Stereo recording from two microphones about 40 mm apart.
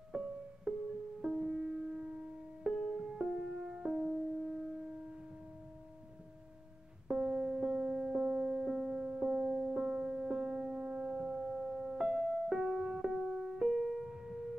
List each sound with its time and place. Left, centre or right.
0.1 s music: centre
2.7 s music: centre
3.2 s music: centre
7.1 s music: centre
11.1 s a sound: centre
11.9 s music: centre